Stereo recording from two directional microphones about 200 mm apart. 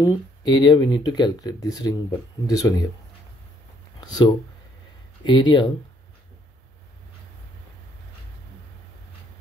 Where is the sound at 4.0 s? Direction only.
20° left (ahead or behind).